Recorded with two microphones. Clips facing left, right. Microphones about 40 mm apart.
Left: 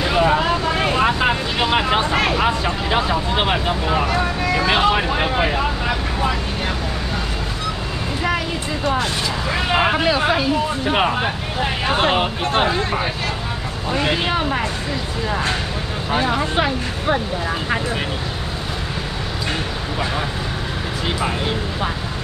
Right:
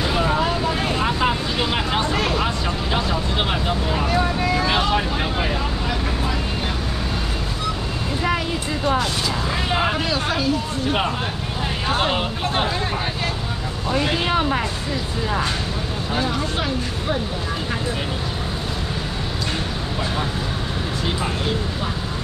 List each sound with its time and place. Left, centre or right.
0.0 s speech: left
9.7 s speech: left
16.1 s speech: left